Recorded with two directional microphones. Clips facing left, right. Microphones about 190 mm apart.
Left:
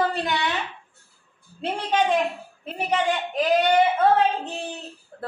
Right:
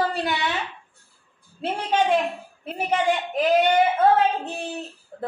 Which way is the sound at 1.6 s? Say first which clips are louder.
Right 1 dB; 5° right (ahead or behind).